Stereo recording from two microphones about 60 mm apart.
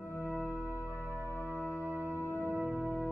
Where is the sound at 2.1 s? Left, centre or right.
Left.